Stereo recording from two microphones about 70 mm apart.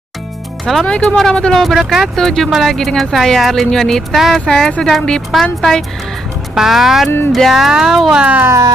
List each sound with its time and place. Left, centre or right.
0.8 s speech: centre
8.2 s speech: right